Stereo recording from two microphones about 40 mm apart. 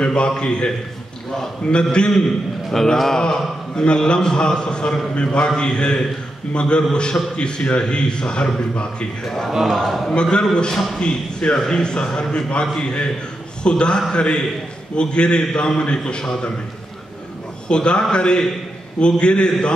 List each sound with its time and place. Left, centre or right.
0.0 s a sound: left
0.4 s a man's voice: left
2.7 s a man's voice: centre
9.8 s a man's voice: centre
10.4 s a man's voice: left
17.6 s a man's voice: left